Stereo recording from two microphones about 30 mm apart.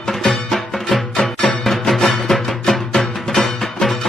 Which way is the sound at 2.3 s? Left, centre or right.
Centre.